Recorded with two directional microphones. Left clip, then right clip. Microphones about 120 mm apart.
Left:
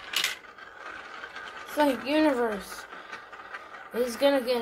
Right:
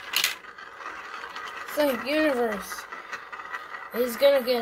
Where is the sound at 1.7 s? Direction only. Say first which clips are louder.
Even; 10° right (ahead or behind).